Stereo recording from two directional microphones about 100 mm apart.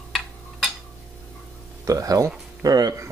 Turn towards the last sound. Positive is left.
turn(degrees=-40)  # may be behind; listen again after turning